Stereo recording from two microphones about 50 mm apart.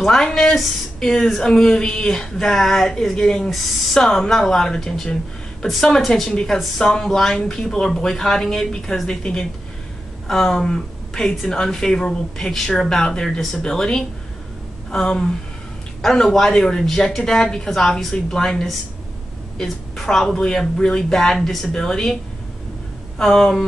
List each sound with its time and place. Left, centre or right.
0.0 s a woman's voice: centre
23.1 s speech: centre